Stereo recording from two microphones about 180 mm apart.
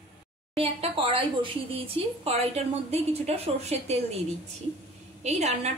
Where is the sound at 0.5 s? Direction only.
30° right (ahead or behind).